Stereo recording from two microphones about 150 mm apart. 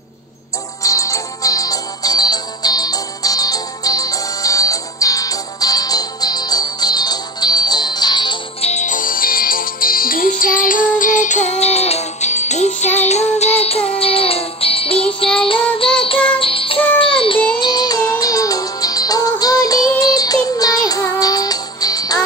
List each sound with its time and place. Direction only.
0.8 s music: 20° left (ahead or behind)
8.5 s music: 50° left (ahead or behind); by 22.2 s 25° left (ahead or behind)